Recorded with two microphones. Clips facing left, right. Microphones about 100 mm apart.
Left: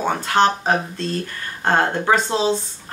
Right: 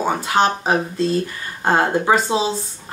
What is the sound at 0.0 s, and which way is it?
Speech, 10° right (ahead or behind).